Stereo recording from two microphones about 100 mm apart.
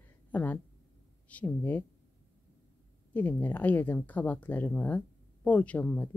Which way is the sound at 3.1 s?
15° left (ahead or behind).